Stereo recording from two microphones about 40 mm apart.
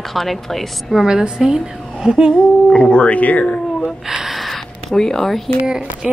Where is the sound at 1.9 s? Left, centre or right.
Centre.